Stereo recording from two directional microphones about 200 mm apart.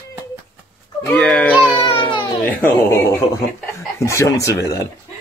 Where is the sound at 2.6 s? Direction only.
10° left (ahead or behind).